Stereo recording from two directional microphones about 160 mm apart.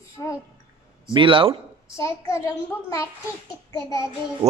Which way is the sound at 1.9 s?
20° left (ahead or behind).